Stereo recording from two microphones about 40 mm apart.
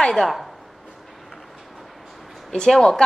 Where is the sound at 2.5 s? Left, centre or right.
Centre.